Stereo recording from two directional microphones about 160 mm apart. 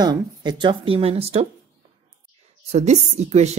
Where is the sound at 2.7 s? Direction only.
45° right (ahead or behind).